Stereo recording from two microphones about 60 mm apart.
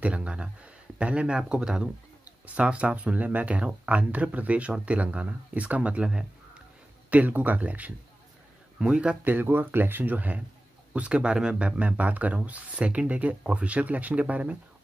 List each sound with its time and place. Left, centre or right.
0.0 s speech: centre
7.1 s speech: right
9.2 s speech: right